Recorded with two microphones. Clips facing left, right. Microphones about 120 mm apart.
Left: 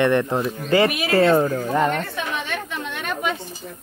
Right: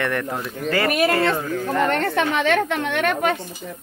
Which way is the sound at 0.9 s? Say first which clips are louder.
Right 5 dB; 50° right (ahead or behind).